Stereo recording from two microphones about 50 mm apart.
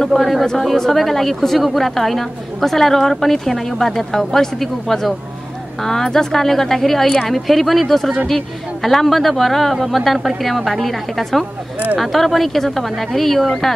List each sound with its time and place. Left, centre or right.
0.1 s speech: centre